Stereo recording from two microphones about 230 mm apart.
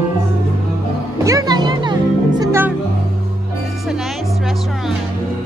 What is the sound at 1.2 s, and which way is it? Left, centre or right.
Music, centre.